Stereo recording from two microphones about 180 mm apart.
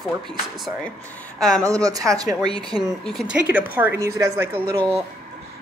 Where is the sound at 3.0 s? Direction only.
Centre (ahead or behind).